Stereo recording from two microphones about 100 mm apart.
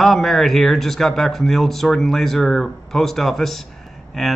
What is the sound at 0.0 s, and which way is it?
Speech, 5° left (ahead or behind).